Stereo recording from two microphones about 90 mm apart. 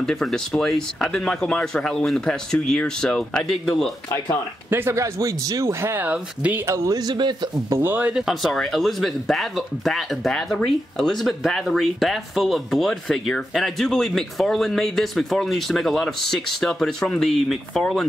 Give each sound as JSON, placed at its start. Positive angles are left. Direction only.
{"t": 0.0, "sound": "speech", "side_deg": 5}
{"t": 4.6, "sound": "speech", "side_deg": -25}
{"t": 6.6, "sound": "speech", "side_deg": -30}
{"t": 7.0, "sound": "a man's voice", "side_deg": -55}
{"t": 7.7, "sound": "speech", "side_deg": -25}
{"t": 8.1, "sound": "speech", "side_deg": 0}